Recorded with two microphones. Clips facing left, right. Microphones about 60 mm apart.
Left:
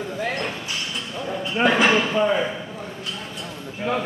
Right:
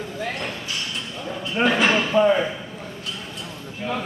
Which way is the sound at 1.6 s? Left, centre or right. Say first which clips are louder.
Left 1 dB; centre.